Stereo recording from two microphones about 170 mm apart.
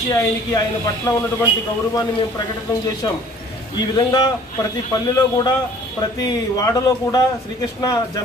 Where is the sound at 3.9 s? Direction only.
25° left (ahead or behind).